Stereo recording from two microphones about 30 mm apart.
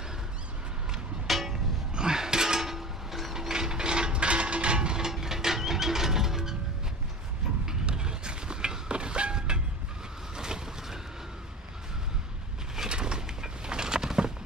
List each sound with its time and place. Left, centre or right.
1.2 s music: centre
2.0 s music: right
3.3 s mechanisms: centre
5.0 s music: centre
7.8 s train: right
10.3 s vehicle: right
12.9 s a sound: right